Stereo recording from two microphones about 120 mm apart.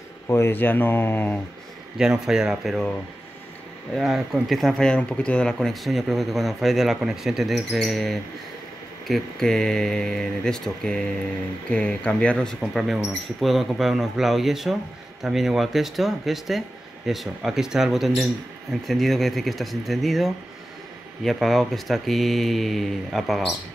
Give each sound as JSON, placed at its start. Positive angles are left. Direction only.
{"t": 0.3, "sound": "speech", "side_deg": 20}
{"t": 2.0, "sound": "speech", "side_deg": -5}
{"t": 3.9, "sound": "speech", "side_deg": 0}
{"t": 12.7, "sound": "speech", "side_deg": -5}